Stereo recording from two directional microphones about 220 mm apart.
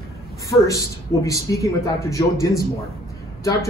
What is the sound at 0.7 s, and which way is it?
Speech, 15° left (ahead or behind).